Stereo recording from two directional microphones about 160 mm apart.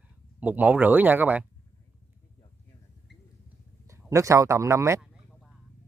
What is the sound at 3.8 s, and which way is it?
Speech, 15° right (ahead or behind).